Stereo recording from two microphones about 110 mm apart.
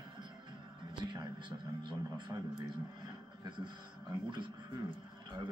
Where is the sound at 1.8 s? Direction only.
45° right (ahead or behind).